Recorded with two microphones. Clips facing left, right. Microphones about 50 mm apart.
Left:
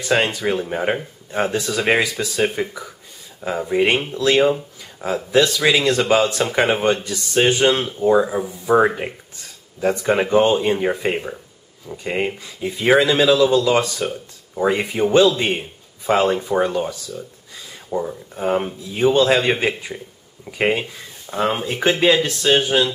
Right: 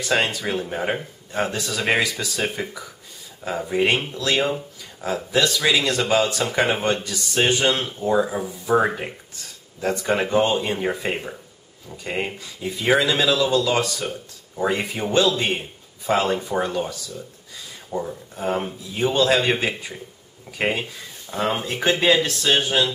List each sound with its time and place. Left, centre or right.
0.0 s speech: centre